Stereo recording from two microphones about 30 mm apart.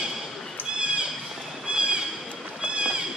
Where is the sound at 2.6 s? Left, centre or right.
Right.